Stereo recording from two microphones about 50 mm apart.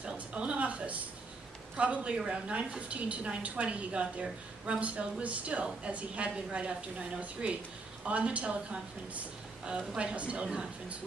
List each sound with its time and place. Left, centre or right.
0.0 s a woman's voice: right
9.7 s a woman's voice: right